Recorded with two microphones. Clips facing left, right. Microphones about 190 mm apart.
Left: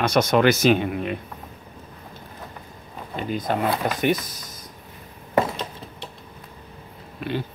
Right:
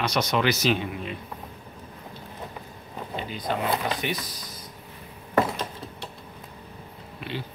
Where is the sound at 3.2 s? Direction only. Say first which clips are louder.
Left 10 dB; 50° left (ahead or behind).